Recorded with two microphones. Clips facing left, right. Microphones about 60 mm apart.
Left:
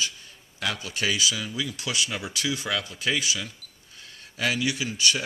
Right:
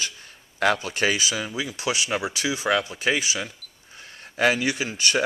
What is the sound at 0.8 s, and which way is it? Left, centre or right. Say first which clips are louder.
Speech: right 3 dB; right.